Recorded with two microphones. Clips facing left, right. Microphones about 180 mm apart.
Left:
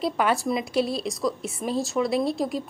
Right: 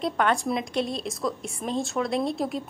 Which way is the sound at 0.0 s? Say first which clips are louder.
Left 1 dB; 5° left (ahead or behind).